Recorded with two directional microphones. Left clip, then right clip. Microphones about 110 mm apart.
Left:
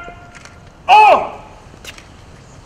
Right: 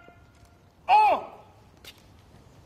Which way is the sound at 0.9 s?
25° left (ahead or behind).